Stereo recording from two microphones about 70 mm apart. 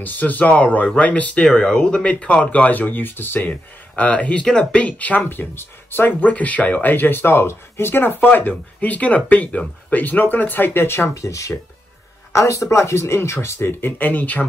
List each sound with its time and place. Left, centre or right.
0.0 s speech: left
11.1 s speech: left